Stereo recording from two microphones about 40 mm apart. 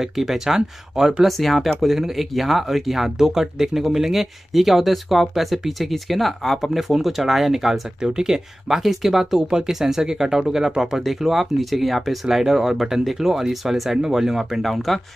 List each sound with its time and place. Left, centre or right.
0.0 s speech: centre
1.2 s speech: centre
8.0 s speech: centre
14.6 s speech: centre